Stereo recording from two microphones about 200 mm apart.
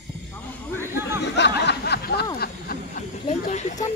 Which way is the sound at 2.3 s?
45° left (ahead or behind).